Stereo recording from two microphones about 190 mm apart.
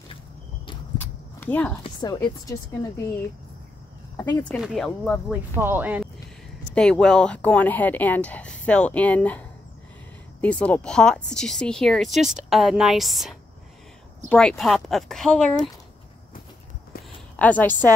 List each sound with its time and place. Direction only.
0.9 s a sound: 10° left (ahead or behind)
1.8 s speech: 20° left (ahead or behind)
4.4 s speech: 5° left (ahead or behind)
5.6 s speech: 10° right (ahead or behind)
6.7 s speech: 5° left (ahead or behind)
17.4 s speech: 10° left (ahead or behind)